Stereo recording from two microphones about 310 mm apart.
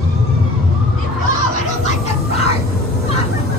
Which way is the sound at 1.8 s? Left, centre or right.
Centre.